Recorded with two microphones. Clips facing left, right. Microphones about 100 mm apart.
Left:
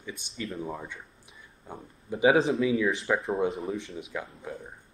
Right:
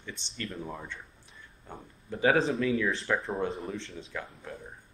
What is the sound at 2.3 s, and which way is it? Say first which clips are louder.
Speech: left 3 dB; centre (ahead or behind).